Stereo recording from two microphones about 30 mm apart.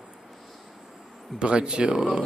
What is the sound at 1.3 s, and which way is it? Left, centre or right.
Speech, right.